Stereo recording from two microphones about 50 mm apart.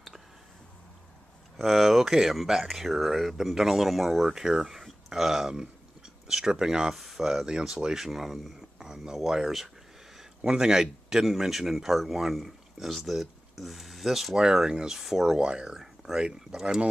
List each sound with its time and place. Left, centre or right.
1.6 s speech: centre
15.3 s speech: centre
15.7 s a sound: centre
16.2 s speech: centre